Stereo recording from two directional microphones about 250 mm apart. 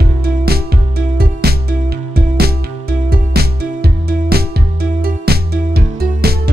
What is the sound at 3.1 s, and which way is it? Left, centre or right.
Music, right.